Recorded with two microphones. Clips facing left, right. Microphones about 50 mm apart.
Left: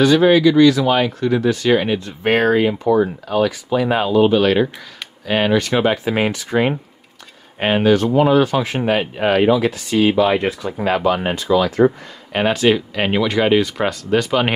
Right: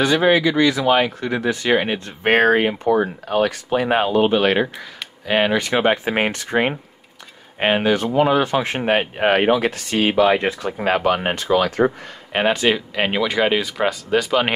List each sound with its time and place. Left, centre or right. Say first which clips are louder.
0.0 s speech: left 4 dB; centre
2.0 s speech: right 3 dB; right
3.4 s speech: left 2 dB; right
3.8 s speech: left 2 dB; right
5.2 s speech: left 1 dB; centre
6.0 s speech: left 2 dB; right
7.5 s speech: left 3 dB; centre
8.3 s speech: left 3 dB; right
10.2 s speech: even; centre
10.6 s speech: left 1 dB; right
11.4 s speech: left 2 dB; right
11.8 s speech: left 4 dB; centre